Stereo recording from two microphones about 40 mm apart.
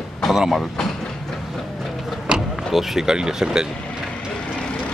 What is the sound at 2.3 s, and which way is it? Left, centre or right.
Power windows, right.